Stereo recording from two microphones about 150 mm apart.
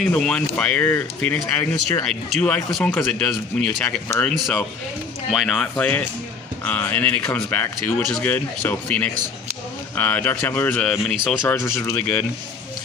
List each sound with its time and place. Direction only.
0.0 s speech: 5° left (ahead or behind)
11.8 s speech: 20° left (ahead or behind)